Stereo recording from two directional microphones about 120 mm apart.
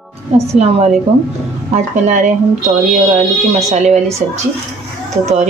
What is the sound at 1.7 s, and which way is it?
Speech, 90° right.